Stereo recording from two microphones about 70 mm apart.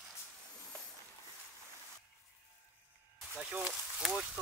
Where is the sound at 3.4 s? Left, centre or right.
Centre.